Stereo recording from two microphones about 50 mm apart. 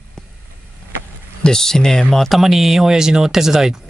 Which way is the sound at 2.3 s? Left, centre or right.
Centre.